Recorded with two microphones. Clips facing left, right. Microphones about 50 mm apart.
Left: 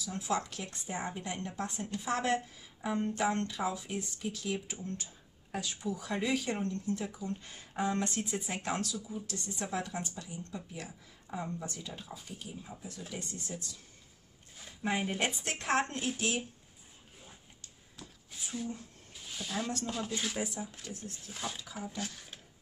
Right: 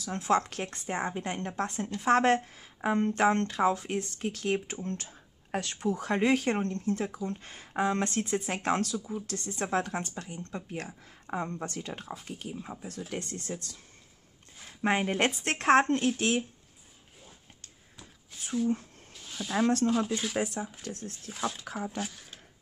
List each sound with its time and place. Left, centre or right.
0.0 s a woman's voice: right
14.8 s a woman's voice: right
19.2 s speech: centre
20.3 s a woman's voice: right
21.3 s speech: centre
21.5 s speech: right